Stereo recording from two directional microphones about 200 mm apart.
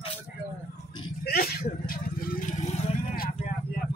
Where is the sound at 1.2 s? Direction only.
50° left (ahead or behind).